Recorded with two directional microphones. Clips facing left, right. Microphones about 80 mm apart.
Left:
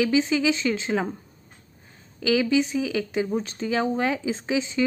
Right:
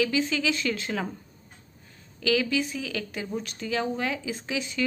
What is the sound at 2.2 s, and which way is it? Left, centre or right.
A woman's voice, left.